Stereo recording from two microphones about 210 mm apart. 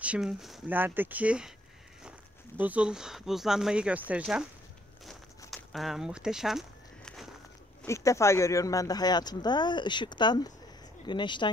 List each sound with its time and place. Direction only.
0.0 s speech: 5° right (ahead or behind)
5.5 s speech: centre (ahead or behind)
7.8 s speech: 15° left (ahead or behind)